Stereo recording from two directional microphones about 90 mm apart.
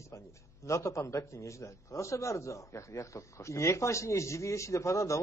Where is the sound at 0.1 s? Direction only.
35° left (ahead or behind).